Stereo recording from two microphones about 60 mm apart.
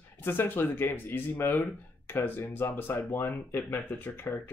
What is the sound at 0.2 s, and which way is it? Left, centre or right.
Speech, left.